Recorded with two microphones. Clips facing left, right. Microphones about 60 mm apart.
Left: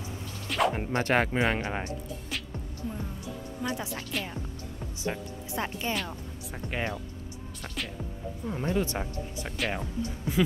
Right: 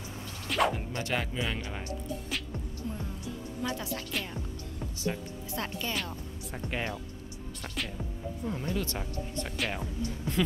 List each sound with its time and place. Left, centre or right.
0.5 s a sound: centre
0.7 s speech: left
2.2 s music: centre
3.6 s a woman's voice: left
5.0 s speech: left
6.5 s speech: centre
8.6 s speech: left
9.7 s speech: centre